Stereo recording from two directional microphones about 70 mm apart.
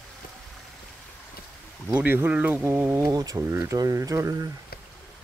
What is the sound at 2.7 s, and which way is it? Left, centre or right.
Speech, right.